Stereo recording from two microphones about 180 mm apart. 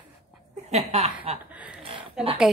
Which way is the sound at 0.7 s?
35° right (ahead or behind).